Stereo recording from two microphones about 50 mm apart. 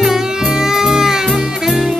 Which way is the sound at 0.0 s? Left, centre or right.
Centre.